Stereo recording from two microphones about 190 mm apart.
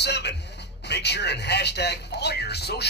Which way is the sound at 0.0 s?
60° left (ahead or behind).